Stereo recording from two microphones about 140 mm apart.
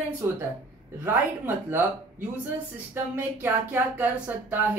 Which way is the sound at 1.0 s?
15° right (ahead or behind).